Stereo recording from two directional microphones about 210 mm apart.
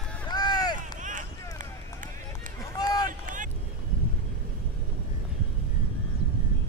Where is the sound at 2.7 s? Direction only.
20° left (ahead or behind).